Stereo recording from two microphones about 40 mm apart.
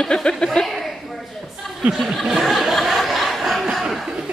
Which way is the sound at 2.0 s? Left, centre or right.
Centre.